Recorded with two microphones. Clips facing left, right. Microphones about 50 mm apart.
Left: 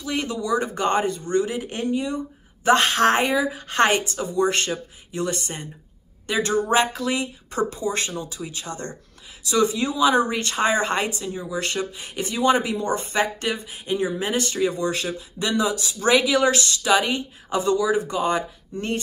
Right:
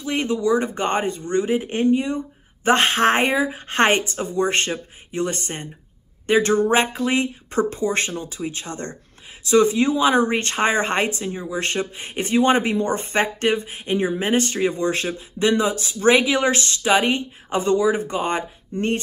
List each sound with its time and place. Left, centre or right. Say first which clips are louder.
0.0 s speech: right 5 dB; right